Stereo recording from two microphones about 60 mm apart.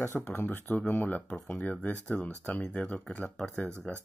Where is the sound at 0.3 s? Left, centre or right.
Left.